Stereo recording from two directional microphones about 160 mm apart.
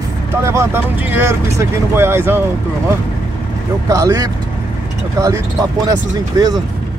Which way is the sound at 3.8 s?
20° right (ahead or behind).